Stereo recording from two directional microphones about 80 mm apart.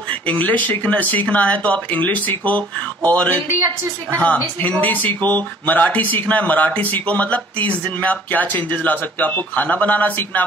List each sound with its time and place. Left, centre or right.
0.3 s speech: centre